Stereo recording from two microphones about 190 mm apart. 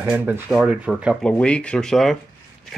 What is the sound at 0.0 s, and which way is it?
Speech, 10° right (ahead or behind).